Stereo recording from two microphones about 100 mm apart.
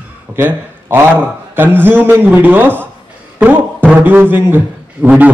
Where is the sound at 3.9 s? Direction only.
20° right (ahead or behind).